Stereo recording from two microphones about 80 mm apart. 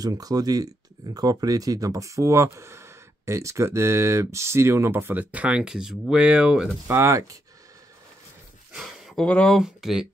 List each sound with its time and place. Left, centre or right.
0.0 s speech: right; by 6.7 s centre
6.9 s speech: right
8.7 s a sound: centre
9.2 s speech: centre
9.6 s speech: centre